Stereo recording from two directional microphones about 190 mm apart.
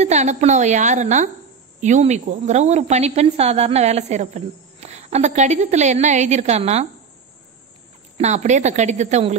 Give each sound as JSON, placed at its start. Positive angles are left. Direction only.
{"t": 0.0, "sound": "a woman's voice", "side_deg": -35}
{"t": 8.2, "sound": "a woman's voice", "side_deg": -35}